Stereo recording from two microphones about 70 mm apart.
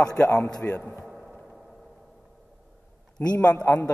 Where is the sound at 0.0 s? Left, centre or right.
Left.